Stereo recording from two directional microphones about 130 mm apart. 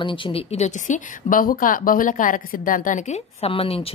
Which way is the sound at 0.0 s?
40° left (ahead or behind).